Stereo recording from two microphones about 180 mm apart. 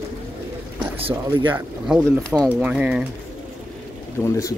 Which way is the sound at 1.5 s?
5° right (ahead or behind).